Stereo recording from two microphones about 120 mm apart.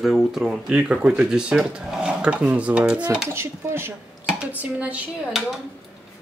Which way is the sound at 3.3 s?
20° right (ahead or behind).